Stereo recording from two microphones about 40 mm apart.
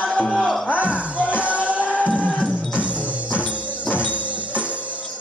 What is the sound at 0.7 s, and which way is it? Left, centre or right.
Music, right.